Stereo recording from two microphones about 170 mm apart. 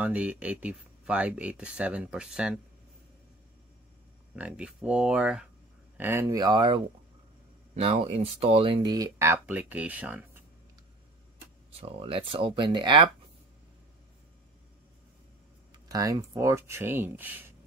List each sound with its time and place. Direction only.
0.0 s speech: 10° right (ahead or behind)
4.4 s speech: 5° right (ahead or behind)
6.2 s speech: 25° right (ahead or behind); by 10.4 s 10° right (ahead or behind)
11.7 s speech: 35° right (ahead or behind)
15.9 s speech: 20° right (ahead or behind)